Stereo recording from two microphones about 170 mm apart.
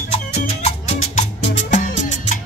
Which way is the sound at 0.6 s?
40° left (ahead or behind).